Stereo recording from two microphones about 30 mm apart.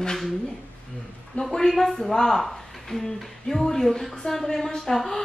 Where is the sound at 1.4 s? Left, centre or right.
Centre.